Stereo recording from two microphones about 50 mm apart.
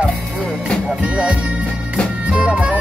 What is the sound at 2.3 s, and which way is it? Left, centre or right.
Music, right.